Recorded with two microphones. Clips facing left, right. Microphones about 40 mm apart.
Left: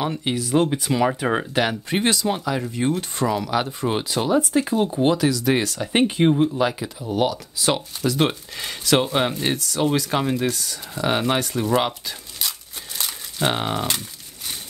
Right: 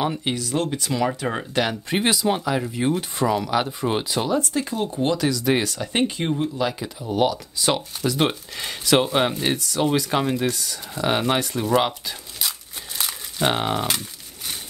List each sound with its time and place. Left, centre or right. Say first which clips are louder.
0.0 s speech: even; centre
0.4 s speech: left 4 dB; centre
1.9 s speech: even; centre
4.3 s speech: left 8 dB; left
5.1 s speech: left 1 dB; centre
5.9 s speech: left 6 dB; centre
6.8 s speech: right 1 dB; centre